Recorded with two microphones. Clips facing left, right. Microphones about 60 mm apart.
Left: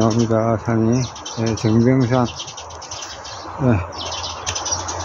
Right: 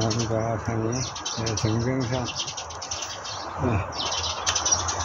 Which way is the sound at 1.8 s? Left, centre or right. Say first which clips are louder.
Left 15 dB; left.